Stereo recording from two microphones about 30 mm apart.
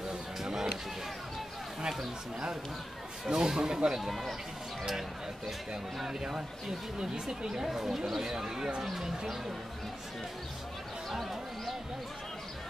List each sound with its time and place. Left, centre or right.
0.4 s a sound: centre
3.3 s speech: right
4.1 s speech: centre
6.0 s speech: centre
7.6 s speech: centre
11.1 s a sound: centre